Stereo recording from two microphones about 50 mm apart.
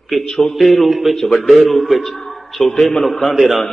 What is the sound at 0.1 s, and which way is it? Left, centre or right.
A man's voice, centre.